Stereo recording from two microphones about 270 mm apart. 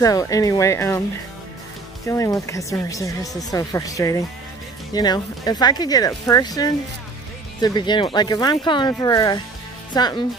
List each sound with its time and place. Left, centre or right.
0.0 s speech: centre
2.0 s speech: centre